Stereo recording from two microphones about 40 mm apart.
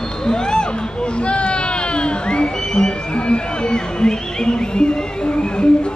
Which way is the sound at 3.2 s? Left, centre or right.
Left.